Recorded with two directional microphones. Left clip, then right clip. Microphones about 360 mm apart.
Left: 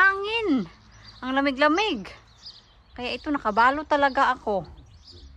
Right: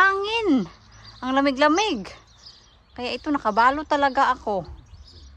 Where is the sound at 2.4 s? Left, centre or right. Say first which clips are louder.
Left 4 dB; left.